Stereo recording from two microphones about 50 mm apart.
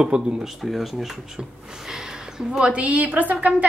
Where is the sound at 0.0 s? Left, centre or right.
Centre.